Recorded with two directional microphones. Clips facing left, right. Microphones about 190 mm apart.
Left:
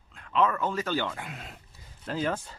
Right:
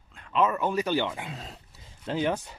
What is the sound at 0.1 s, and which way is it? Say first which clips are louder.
Speech: right 1 dB; centre (ahead or behind).